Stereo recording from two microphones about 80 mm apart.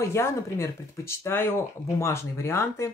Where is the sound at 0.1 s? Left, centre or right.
Left.